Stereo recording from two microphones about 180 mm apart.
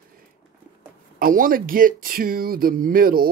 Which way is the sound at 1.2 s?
50° right (ahead or behind).